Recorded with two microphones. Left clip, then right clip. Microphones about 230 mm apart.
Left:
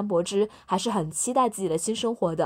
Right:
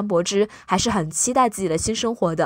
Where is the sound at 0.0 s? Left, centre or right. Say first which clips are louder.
Right 4 dB; right.